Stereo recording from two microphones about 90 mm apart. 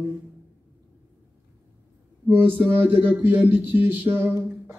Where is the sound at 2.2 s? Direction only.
25° right (ahead or behind).